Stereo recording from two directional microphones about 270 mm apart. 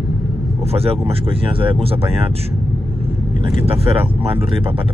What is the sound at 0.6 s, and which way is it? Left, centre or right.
Speech, right.